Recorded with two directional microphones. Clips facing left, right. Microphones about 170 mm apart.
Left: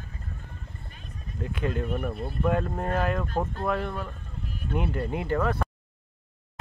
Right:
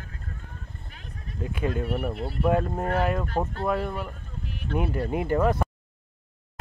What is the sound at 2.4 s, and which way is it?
Speech, 10° right (ahead or behind).